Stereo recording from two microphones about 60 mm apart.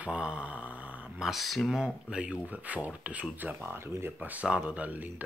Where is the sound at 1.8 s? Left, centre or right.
Centre.